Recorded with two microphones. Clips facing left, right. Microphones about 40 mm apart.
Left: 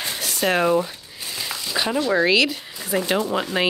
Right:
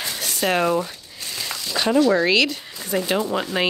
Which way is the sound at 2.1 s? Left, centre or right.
Centre.